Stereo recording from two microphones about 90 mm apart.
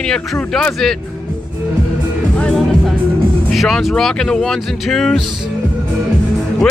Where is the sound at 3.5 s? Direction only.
Centre (ahead or behind).